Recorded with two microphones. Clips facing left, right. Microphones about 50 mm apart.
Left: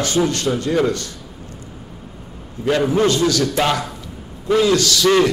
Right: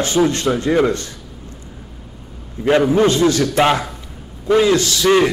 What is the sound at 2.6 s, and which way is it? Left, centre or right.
A man's voice, right.